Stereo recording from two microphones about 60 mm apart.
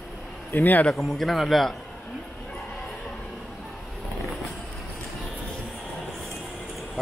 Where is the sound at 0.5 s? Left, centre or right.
Left.